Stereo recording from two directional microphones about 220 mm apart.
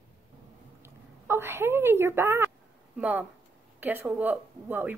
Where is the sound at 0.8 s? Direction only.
10° right (ahead or behind).